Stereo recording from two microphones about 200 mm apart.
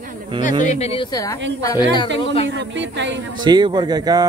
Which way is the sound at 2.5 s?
65° right (ahead or behind).